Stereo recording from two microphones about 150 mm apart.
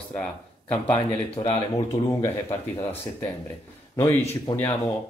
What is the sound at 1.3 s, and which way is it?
Speech, 40° left (ahead or behind).